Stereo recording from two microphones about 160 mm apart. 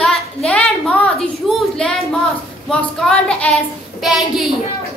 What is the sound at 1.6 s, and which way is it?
Child singing, 5° left (ahead or behind).